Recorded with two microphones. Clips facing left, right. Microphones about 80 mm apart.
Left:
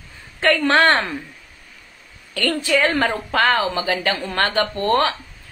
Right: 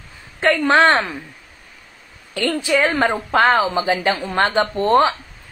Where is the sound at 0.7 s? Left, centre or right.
Centre.